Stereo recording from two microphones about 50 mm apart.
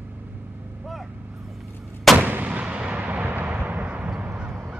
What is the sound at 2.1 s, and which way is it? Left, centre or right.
Artillery fire, right.